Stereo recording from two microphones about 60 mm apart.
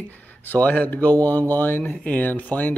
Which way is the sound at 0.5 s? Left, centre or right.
Left.